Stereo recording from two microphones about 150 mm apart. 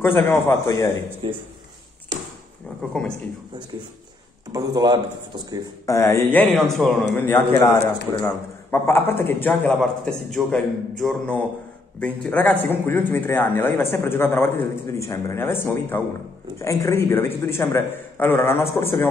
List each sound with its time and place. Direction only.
0.0 s a man's voice: 15° left (ahead or behind)
1.2 s speech: 35° right (ahead or behind)
2.9 s a man's voice: 5° left (ahead or behind)
4.5 s a man's voice: 25° right (ahead or behind)
5.9 s speech: 20° left (ahead or behind)
6.5 s a man's voice: centre (ahead or behind)
7.2 s a man's voice: 15° left (ahead or behind)